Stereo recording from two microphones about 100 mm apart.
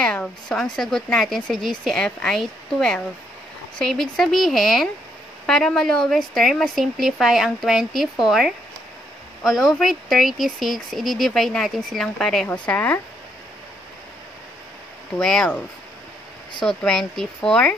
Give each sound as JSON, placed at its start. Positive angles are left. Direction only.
{"t": 0.0, "sound": "speech", "side_deg": 10}
{"t": 12.6, "sound": "speech", "side_deg": 15}
{"t": 15.1, "sound": "speech", "side_deg": 5}
{"t": 16.6, "sound": "speech", "side_deg": 5}